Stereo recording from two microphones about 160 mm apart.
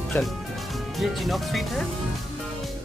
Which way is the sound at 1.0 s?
Centre (ahead or behind).